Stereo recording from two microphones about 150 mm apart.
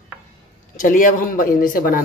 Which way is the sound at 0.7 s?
65° left (ahead or behind).